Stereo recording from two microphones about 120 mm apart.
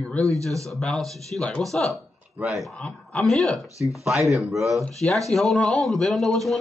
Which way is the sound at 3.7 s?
25° left (ahead or behind).